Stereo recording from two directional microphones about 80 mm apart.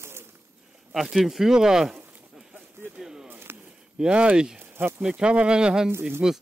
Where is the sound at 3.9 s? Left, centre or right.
Centre.